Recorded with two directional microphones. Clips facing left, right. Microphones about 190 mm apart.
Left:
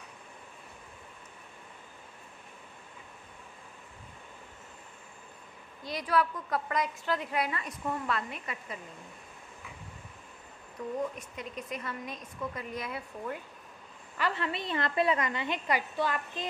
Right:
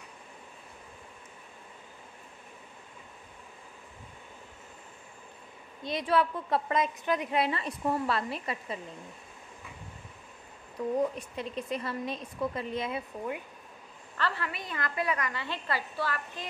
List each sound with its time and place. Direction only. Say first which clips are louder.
5.9 s a woman's voice: right 2 dB; 25° right (ahead or behind)
10.8 s a woman's voice: right 5 dB; 35° right (ahead or behind); by 13.4 s 20° right (ahead or behind)
14.1 s a woman's voice: even; 15° left (ahead or behind)
14.4 s a woman's voice: left 4 dB; 25° left (ahead or behind)